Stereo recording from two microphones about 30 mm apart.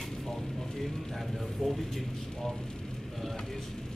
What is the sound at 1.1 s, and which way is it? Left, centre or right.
Speech, centre.